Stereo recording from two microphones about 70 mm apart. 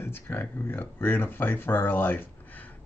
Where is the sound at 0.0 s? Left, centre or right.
Left.